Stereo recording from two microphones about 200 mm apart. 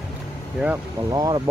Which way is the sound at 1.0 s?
20° right (ahead or behind).